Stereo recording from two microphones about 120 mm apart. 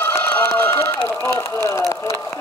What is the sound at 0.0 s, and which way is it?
Run, 15° left (ahead or behind).